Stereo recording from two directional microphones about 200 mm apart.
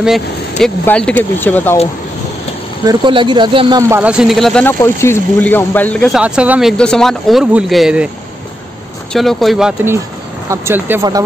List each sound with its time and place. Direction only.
0.0 s speech: centre (ahead or behind)
2.8 s speech: 20° right (ahead or behind)
4.0 s speech: 5° right (ahead or behind)
9.1 s speech: centre (ahead or behind); by 11.2 s 15° right (ahead or behind)